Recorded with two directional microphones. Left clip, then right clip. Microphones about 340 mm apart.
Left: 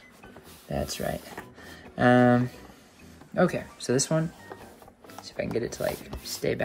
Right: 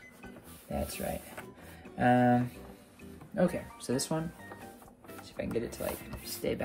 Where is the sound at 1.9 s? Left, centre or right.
Left.